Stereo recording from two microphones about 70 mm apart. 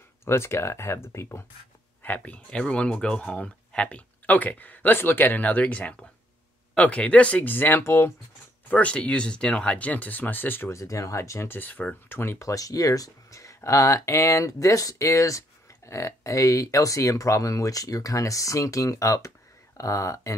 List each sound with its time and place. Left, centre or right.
0.2 s speech: left
2.0 s speech: left
8.6 s speech: centre
10.7 s speech: left
12.4 s speech: left